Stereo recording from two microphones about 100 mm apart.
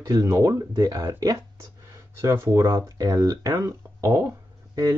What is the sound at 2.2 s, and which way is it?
Speech, 30° right (ahead or behind).